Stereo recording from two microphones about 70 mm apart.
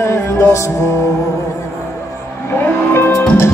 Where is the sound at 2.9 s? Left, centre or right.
Left.